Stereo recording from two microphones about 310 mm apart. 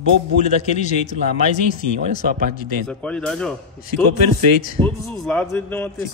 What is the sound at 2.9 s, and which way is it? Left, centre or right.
Speech, centre.